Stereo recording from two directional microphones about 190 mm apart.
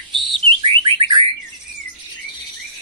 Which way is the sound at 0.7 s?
30° right (ahead or behind).